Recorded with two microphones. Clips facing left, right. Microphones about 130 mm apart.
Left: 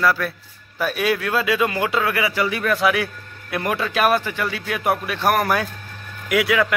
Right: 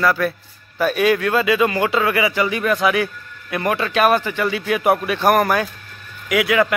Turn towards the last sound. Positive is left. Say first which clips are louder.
# right 2 dB
turn(degrees=0)  # may be behind; listen again after turning